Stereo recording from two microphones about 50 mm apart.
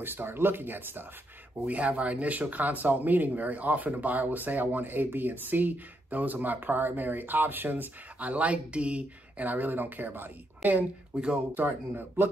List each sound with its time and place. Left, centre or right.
0.0 s speech: right
1.7 s speech: right
11.1 s speech: right
11.5 s speech: right